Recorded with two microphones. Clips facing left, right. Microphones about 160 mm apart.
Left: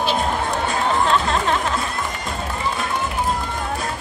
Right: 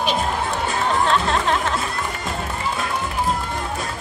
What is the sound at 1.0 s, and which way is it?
Music, centre (ahead or behind).